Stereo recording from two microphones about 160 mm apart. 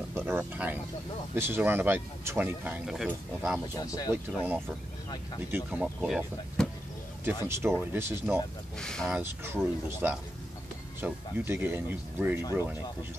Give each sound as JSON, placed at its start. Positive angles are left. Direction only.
{"t": 0.1, "sound": "speech", "side_deg": -10}
{"t": 3.6, "sound": "speech", "side_deg": 20}
{"t": 4.1, "sound": "speech", "side_deg": -15}
{"t": 7.4, "sound": "speech", "side_deg": -15}
{"t": 8.7, "sound": "speech", "side_deg": 5}
{"t": 9.1, "sound": "speech", "side_deg": -15}